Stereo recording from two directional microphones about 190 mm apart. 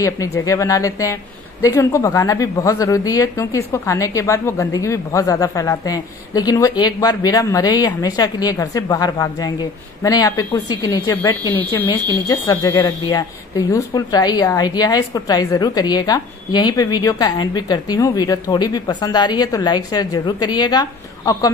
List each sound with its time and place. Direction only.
0.5 s a woman's voice: 15° left (ahead or behind)